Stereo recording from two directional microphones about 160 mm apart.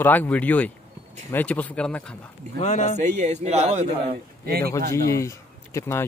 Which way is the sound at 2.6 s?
50° left (ahead or behind).